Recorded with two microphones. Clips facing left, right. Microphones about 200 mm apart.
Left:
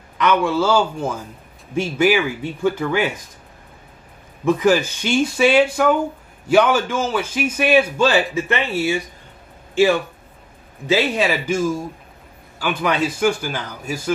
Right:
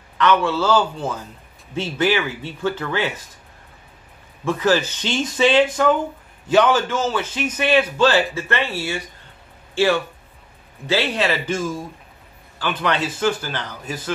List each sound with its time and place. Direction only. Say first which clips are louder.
0.2 s a man's voice: left 1 dB; 15° left (ahead or behind)
4.5 s a man's voice: left 3 dB; 15° left (ahead or behind)
10.9 s a man's voice: left 2 dB; 10° left (ahead or behind)